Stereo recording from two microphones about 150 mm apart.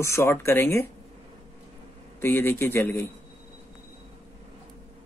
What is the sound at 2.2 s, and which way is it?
Speech, 15° left (ahead or behind).